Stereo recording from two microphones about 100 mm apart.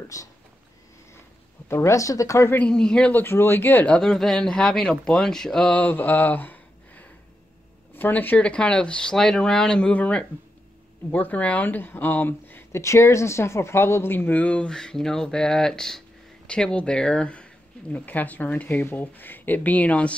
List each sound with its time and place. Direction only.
0.1 s speech: 35° left (ahead or behind)
1.7 s speech: 30° left (ahead or behind)
2.5 s speech: 10° left (ahead or behind)
3.1 s speech: 20° left (ahead or behind)